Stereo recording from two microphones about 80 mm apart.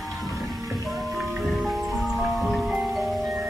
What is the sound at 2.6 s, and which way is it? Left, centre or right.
Music, centre.